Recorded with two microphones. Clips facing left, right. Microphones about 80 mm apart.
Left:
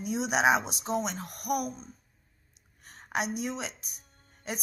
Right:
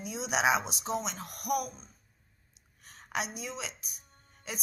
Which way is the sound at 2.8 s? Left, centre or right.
Left.